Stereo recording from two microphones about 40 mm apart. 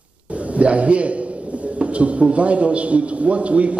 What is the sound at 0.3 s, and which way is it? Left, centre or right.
A man's voice, right.